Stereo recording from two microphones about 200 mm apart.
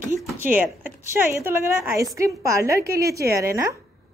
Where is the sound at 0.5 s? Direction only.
10° right (ahead or behind).